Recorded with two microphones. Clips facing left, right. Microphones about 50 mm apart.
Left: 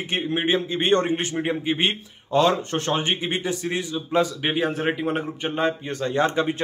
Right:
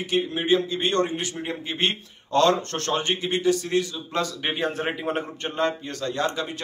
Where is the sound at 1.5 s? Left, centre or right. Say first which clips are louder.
Left 1 dB; centre.